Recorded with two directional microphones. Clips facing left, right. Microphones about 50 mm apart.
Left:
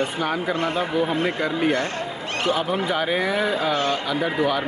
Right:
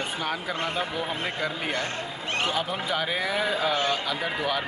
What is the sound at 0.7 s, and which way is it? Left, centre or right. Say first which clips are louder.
Speech: left 7 dB; centre.